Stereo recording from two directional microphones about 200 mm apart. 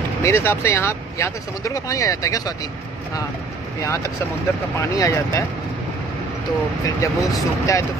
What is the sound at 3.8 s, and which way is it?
Speech, 15° left (ahead or behind).